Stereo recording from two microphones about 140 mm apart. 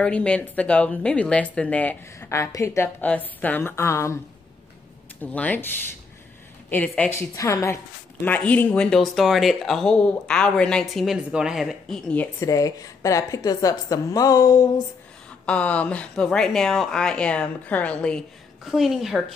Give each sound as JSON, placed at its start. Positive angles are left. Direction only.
{"t": 0.0, "sound": "speech", "side_deg": 10}
{"t": 5.2, "sound": "speech", "side_deg": 10}
{"t": 6.7, "sound": "a woman's voice", "side_deg": 10}
{"t": 12.4, "sound": "a woman's voice", "side_deg": 25}
{"t": 15.4, "sound": "speech", "side_deg": 10}
{"t": 18.7, "sound": "a woman's voice", "side_deg": 0}